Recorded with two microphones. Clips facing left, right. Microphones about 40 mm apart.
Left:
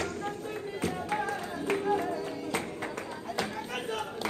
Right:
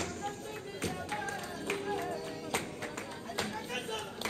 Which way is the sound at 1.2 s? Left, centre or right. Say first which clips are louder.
Left 5 dB; centre.